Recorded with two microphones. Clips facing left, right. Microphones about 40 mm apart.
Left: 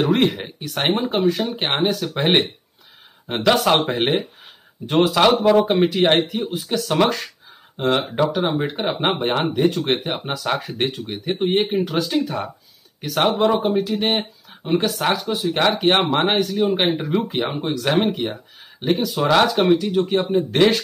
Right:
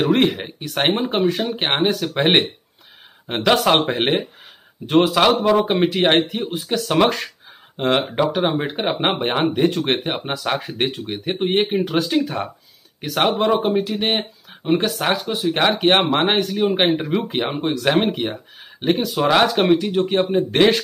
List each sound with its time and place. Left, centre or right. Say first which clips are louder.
0.0 s speech: right 1 dB; centre
9.8 s speech: right 1 dB; right
10.2 s speech: even; centre
19.0 s speech: even; centre